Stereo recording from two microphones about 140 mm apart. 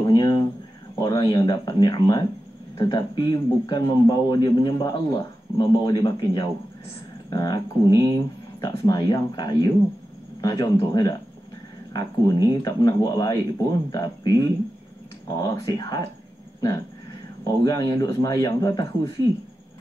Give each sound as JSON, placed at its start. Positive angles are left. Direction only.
{"t": 0.0, "sound": "a sound", "side_deg": 30}
{"t": 0.9, "sound": "speech", "side_deg": 30}
{"t": 17.5, "sound": "speech", "side_deg": 25}